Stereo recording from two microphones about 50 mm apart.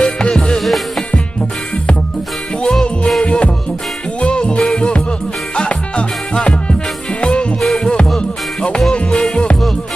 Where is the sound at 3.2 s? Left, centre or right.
Left.